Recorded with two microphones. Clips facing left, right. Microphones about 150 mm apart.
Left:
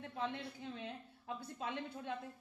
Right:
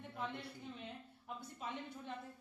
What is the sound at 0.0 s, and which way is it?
A woman's voice, 85° left.